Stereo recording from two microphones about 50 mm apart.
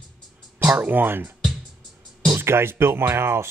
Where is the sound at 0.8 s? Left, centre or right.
Right.